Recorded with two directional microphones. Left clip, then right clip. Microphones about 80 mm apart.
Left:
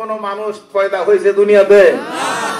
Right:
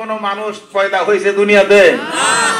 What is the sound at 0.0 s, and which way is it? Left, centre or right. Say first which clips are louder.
A man's voice: right 1 dB; left.